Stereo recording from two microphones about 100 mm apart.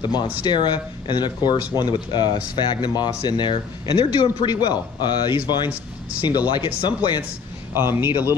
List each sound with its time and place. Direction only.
0.0 s speech: 45° left (ahead or behind)
7.7 s a man's voice: 25° right (ahead or behind)